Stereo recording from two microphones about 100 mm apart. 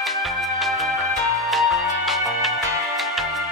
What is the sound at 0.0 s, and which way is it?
Music, centre (ahead or behind).